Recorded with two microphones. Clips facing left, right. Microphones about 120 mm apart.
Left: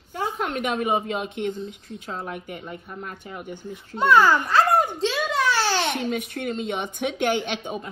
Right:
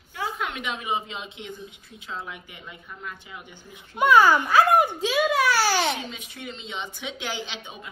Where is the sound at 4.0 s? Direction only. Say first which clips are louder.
Even; 15° right (ahead or behind).